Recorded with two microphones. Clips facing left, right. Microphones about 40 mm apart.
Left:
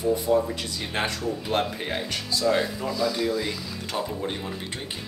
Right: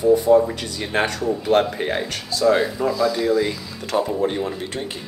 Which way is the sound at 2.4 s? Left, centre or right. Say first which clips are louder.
Right 7 dB; centre.